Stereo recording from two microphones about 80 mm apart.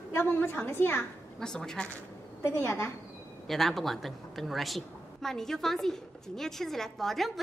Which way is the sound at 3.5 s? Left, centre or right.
Centre.